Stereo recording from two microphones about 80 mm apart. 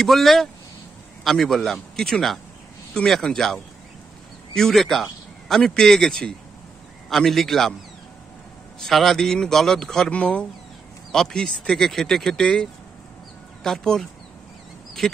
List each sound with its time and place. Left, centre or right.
0.0 s a man's voice: centre
8.8 s a man's voice: centre
13.7 s speech: centre